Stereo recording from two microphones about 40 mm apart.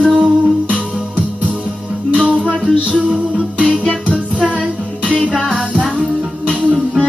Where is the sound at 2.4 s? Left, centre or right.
Right.